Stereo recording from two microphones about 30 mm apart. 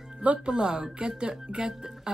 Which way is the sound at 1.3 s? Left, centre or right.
Right.